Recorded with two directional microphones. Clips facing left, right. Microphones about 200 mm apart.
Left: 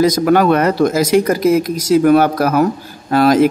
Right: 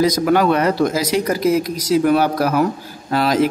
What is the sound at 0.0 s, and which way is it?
A man's voice, 50° left (ahead or behind).